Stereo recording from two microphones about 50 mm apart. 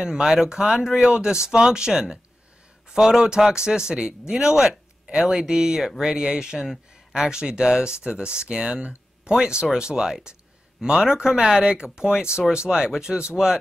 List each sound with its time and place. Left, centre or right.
0.0 s speech: centre